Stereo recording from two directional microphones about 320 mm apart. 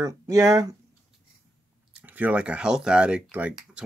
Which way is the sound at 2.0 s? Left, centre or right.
Centre.